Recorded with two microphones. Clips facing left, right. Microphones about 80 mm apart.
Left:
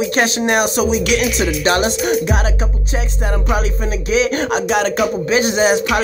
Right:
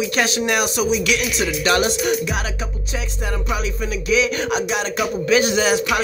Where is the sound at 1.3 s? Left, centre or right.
Left.